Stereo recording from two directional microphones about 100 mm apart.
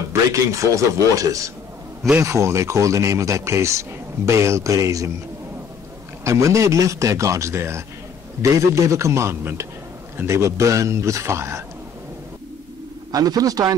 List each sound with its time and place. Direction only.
0.1 s speech: 30° right (ahead or behind)
6.2 s speech: 30° right (ahead or behind)
13.1 s speech: 40° right (ahead or behind)